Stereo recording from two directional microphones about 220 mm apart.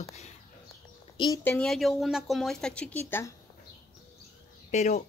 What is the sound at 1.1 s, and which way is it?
Speech, 20° left (ahead or behind).